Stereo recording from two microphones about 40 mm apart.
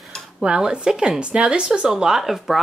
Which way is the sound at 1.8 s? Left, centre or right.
Centre.